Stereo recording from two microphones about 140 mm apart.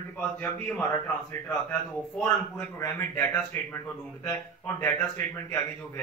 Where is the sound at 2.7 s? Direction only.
20° left (ahead or behind).